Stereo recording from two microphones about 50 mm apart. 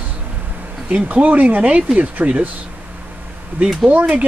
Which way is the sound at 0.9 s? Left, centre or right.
Right.